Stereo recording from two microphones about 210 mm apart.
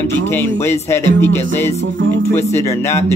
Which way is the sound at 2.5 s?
15° left (ahead or behind).